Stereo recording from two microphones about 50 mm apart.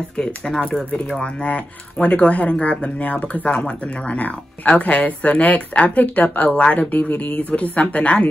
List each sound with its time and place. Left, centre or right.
0.2 s speech: centre
1.2 s speech: left